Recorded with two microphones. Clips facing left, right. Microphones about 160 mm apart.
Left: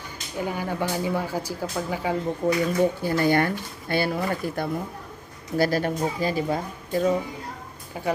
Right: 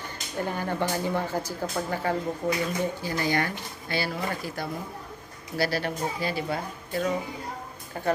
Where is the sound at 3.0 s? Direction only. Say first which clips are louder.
Left 6 dB; 55° left (ahead or behind).